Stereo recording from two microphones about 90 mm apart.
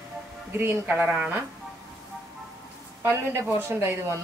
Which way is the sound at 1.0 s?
15° right (ahead or behind).